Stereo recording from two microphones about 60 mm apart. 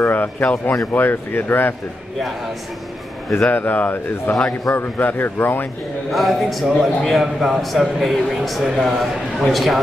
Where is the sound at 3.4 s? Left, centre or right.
Left.